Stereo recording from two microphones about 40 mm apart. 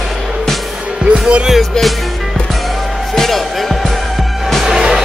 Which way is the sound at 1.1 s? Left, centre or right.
Right.